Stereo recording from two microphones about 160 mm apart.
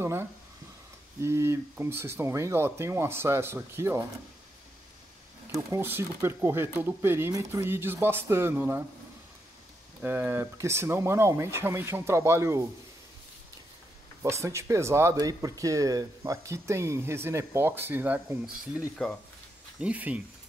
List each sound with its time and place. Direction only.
0.0 s speech: 15° right (ahead or behind)
5.5 s speech: 15° right (ahead or behind)
10.0 s speech: 15° right (ahead or behind)
14.2 s speech: 15° right (ahead or behind)